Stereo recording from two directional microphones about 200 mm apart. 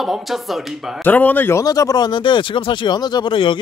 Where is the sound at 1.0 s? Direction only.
10° left (ahead or behind).